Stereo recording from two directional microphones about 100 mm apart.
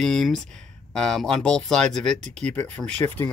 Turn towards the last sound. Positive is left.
turn(degrees=25)  # may be behind; listen again after turning